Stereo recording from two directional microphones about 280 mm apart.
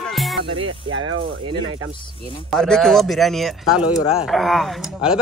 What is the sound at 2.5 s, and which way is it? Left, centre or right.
Speech, centre.